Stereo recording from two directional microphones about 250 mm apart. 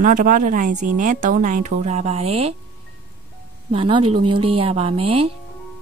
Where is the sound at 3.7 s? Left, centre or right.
Right.